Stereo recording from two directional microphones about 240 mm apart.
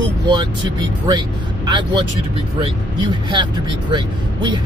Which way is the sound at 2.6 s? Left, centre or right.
Centre.